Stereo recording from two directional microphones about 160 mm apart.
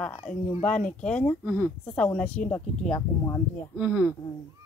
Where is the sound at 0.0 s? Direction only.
10° left (ahead or behind).